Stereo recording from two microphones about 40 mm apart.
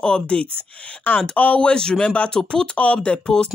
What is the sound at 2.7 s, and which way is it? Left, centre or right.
Speech, left.